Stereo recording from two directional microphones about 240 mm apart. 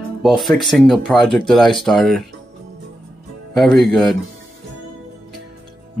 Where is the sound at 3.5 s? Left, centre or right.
Centre.